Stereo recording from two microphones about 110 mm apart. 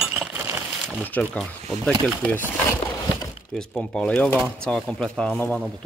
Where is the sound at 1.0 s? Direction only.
15° left (ahead or behind).